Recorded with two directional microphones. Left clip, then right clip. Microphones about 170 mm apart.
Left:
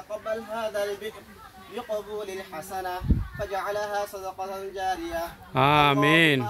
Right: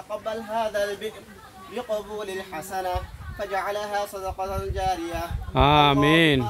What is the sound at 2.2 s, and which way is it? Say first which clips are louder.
Speech: right 3 dB; 20° right (ahead or behind).